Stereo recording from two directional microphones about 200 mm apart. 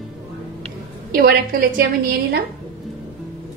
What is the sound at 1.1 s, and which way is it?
A woman's voice, 50° right (ahead or behind).